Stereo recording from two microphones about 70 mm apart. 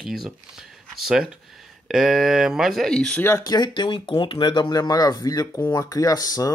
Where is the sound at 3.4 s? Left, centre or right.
Left.